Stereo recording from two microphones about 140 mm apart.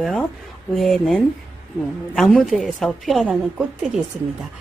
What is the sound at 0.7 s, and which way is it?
A woman's voice, centre (ahead or behind).